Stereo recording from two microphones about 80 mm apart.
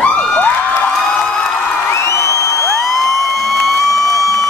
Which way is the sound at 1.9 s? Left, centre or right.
Left.